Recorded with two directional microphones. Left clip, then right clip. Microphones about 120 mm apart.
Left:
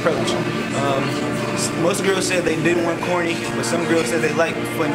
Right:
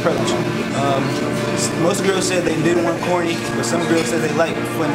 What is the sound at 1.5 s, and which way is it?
Speech, centre (ahead or behind).